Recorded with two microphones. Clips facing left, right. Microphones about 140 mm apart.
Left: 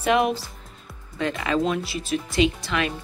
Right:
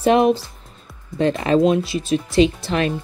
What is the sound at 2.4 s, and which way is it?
Speech, 35° right (ahead or behind).